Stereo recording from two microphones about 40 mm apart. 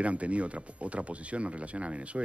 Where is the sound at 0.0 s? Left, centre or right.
Right.